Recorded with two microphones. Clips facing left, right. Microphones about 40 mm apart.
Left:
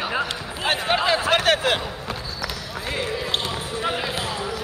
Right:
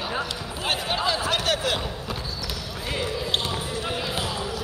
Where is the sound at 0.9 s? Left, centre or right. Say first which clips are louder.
Left 6 dB; left.